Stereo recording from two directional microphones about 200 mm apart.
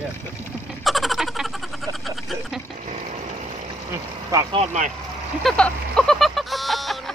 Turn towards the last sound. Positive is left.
turn(degrees=0)  # may be behind; listen again after turning